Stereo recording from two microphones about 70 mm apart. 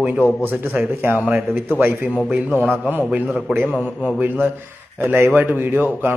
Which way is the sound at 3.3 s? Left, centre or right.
Centre.